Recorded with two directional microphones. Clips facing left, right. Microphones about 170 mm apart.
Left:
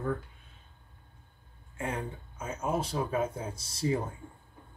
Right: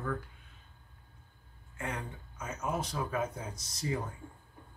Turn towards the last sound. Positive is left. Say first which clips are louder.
# left 6 dB
turn(degrees=30)  # may be behind; listen again after turning